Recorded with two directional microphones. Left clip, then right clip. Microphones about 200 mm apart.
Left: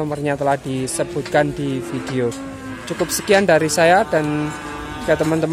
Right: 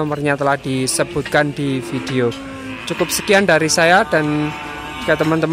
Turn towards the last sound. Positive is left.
turn(degrees=0)  # may be behind; listen again after turning